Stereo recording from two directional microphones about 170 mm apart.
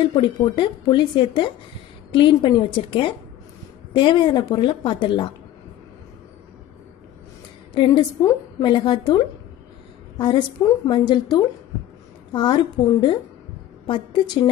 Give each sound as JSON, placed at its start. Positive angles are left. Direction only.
{"t": 0.1, "sound": "a woman's voice", "side_deg": 25}
{"t": 7.7, "sound": "a woman's voice", "side_deg": 25}
{"t": 13.8, "sound": "a woman's voice", "side_deg": 25}